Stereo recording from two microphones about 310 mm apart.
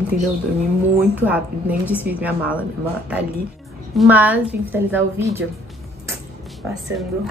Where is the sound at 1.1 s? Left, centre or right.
Centre.